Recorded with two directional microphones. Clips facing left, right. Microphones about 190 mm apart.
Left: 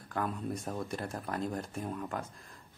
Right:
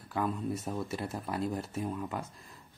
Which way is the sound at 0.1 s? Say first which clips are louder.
Right 2 dB; 5° right (ahead or behind).